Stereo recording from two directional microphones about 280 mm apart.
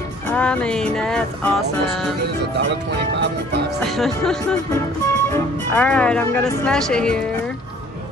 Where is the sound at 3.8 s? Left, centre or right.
Centre.